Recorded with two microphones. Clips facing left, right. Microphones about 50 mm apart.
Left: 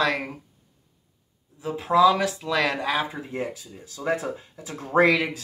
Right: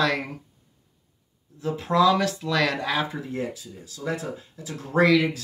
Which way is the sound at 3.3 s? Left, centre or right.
Left.